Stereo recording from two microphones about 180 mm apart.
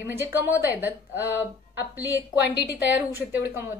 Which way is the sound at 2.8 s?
10° right (ahead or behind).